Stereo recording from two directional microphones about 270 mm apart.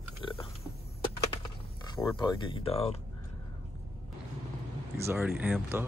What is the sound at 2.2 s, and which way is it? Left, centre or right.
Speech, centre.